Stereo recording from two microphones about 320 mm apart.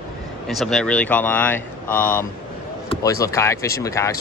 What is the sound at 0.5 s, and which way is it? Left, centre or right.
Speech, centre.